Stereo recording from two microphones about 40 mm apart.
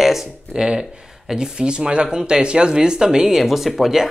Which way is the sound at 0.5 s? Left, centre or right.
Centre.